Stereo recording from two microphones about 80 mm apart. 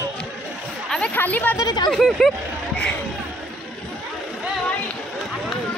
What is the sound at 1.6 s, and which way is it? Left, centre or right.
Speech, left.